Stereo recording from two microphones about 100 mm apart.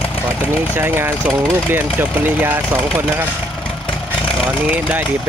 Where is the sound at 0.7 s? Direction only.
20° right (ahead or behind).